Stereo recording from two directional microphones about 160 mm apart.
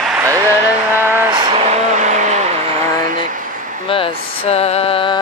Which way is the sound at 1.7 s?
45° right (ahead or behind).